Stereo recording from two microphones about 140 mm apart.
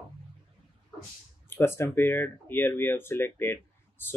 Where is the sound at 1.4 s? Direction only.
15° left (ahead or behind).